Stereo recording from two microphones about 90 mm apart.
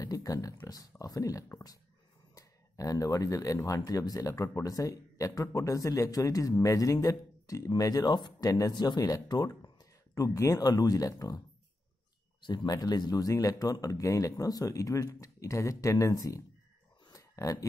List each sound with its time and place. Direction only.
0.0 s speech: 40° left (ahead or behind)
8.5 s speech: 40° left (ahead or behind)
8.7 s speech: 50° left (ahead or behind)
12.4 s speech: 55° left (ahead or behind); by 16.4 s 40° left (ahead or behind)
17.1 s a sound: 40° left (ahead or behind)